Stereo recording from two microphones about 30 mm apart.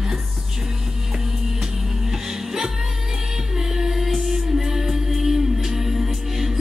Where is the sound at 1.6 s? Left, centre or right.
Centre.